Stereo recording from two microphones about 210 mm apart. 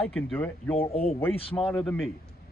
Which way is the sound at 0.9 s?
30° left (ahead or behind).